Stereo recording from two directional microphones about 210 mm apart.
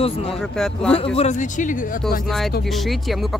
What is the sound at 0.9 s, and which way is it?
Speech, 30° left (ahead or behind).